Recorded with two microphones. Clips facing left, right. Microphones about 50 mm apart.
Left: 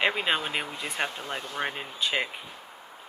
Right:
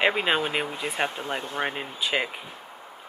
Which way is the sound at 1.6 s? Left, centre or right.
Centre.